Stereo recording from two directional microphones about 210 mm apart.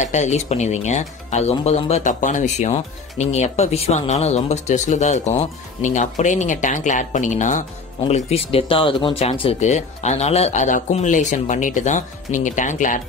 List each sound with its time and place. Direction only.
0.0 s speech: 35° left (ahead or behind)